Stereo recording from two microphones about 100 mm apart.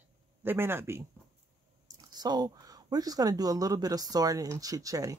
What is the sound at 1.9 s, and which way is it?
Speech, 40° right (ahead or behind).